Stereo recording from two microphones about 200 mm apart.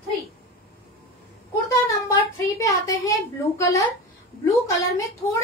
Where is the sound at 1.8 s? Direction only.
15° left (ahead or behind).